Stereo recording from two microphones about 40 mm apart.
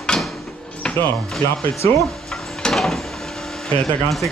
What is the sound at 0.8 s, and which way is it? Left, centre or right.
Music, left.